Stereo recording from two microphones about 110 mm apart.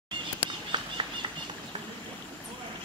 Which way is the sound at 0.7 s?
40° right (ahead or behind).